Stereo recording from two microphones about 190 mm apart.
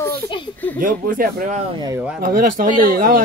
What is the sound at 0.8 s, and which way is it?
Speech, 45° right (ahead or behind).